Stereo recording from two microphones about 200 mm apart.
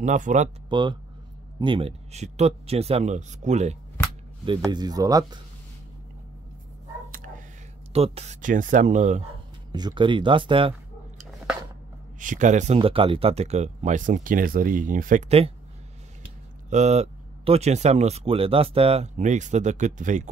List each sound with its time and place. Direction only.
0.0 s speech: 40° right (ahead or behind)
0.7 s speech: 25° right (ahead or behind)
4.6 s speech: 20° right (ahead or behind)
7.1 s a sound: 45° right (ahead or behind)
7.9 s speech: 30° right (ahead or behind)
9.7 s speech: 20° right (ahead or behind)
12.2 s speech: 40° right (ahead or behind)
16.7 s speech: 35° right (ahead or behind)